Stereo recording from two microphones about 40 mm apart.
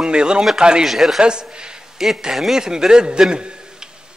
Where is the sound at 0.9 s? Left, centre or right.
Centre.